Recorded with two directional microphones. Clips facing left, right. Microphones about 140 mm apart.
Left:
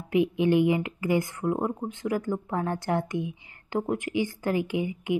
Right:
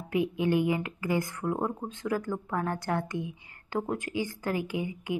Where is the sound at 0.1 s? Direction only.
20° left (ahead or behind).